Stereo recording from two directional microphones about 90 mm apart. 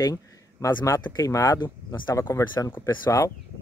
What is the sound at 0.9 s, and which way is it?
Speech, 55° left (ahead or behind).